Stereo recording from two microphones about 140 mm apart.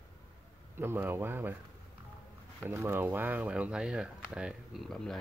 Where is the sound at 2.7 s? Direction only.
15° right (ahead or behind).